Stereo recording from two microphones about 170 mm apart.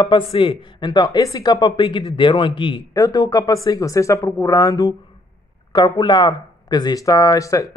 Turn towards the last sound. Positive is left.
turn(degrees=20)  # may be behind; listen again after turning